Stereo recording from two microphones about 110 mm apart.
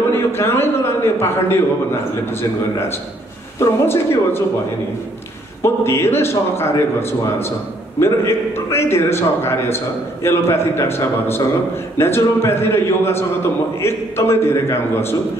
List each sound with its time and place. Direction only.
0.1 s a sound: 25° left (ahead or behind)
3.5 s a man's voice: 25° left (ahead or behind)
5.6 s a man's voice: 25° left (ahead or behind)